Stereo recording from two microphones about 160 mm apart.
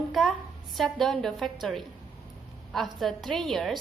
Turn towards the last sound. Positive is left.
turn(degrees=0)  # may be behind; listen again after turning